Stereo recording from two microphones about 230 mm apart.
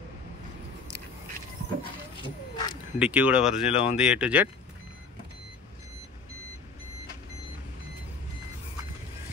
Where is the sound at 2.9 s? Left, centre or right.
Centre.